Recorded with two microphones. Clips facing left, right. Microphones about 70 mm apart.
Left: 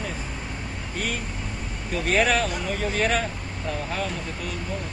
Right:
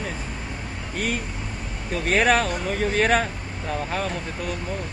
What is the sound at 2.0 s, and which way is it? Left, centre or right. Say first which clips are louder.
Speech: right 2 dB; right.